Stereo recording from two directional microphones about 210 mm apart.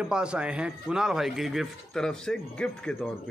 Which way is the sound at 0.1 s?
5° right (ahead or behind).